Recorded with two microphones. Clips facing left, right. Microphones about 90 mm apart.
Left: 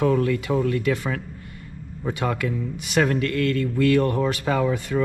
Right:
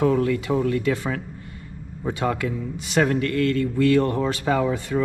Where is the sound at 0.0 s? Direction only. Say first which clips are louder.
Right 1 dB; 25° right (ahead or behind).